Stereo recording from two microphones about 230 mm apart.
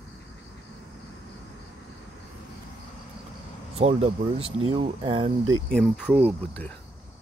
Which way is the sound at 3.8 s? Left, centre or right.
Right.